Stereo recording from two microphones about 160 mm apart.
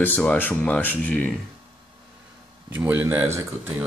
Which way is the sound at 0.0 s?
10° left (ahead or behind).